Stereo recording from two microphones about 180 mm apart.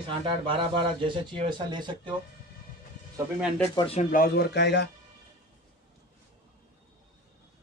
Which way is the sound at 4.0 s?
50° left (ahead or behind).